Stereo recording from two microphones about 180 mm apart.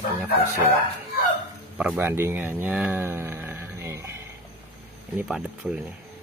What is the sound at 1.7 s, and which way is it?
Speech, 10° right (ahead or behind).